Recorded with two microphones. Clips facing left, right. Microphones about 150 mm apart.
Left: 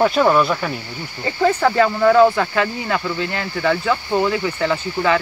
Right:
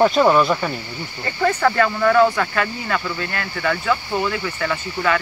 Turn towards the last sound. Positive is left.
turn(degrees=15)  # may be behind; listen again after turning